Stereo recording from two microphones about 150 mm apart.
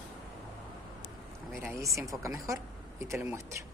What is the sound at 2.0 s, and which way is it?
A woman's voice, 20° right (ahead or behind).